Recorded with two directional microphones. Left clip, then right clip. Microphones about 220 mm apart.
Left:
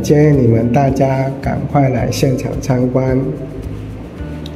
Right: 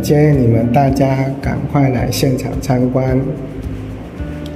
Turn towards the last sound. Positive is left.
turn(degrees=0)  # may be behind; listen again after turning